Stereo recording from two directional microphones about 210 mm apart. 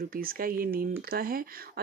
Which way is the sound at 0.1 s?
45° right (ahead or behind).